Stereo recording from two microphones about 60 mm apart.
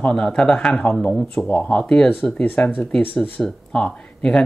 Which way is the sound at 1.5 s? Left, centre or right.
Centre.